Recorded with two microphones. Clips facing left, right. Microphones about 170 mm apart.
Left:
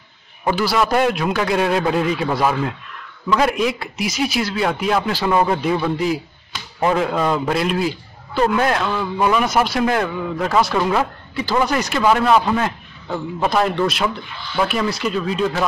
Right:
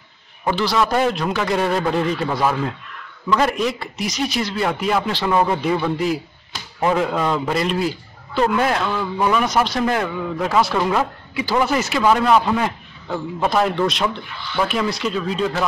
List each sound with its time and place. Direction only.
0.5 s a man's voice: 10° left (ahead or behind)